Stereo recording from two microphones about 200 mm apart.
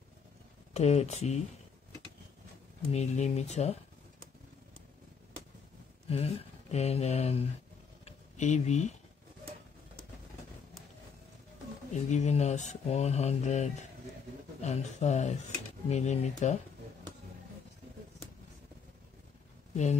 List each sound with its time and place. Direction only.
0.7 s speech: 35° left (ahead or behind)
2.9 s speech: 35° left (ahead or behind)
6.0 s a sound: 30° left (ahead or behind)
11.9 s speech: 35° left (ahead or behind)
19.7 s speech: 35° left (ahead or behind)